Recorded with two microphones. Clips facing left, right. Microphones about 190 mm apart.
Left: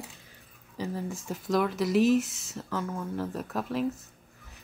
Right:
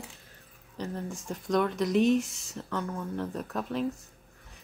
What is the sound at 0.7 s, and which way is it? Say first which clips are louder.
Speech: left 2 dB; 5° left (ahead or behind).